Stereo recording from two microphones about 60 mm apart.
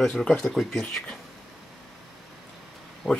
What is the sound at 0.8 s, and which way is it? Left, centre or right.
Speech, centre.